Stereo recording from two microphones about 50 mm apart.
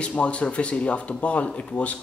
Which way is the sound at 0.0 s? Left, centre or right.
Left.